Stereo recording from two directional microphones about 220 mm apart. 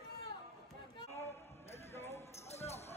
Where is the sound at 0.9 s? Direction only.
10° left (ahead or behind).